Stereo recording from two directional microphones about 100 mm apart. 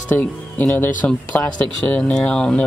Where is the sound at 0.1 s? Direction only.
20° left (ahead or behind).